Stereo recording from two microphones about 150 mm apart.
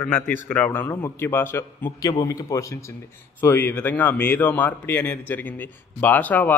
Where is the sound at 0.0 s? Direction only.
15° left (ahead or behind).